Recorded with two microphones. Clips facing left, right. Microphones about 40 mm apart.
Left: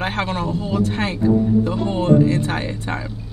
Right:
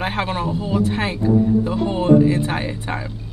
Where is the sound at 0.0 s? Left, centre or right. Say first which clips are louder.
Even; centre.